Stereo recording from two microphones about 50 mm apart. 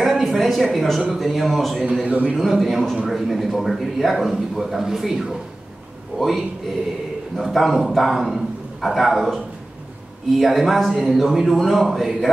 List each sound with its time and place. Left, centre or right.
0.0 s a sound: centre
1.0 s a man's voice: centre
1.8 s a man's voice: centre
2.3 s a man's voice: centre
6.1 s a man's voice: right
7.3 s a man's voice: centre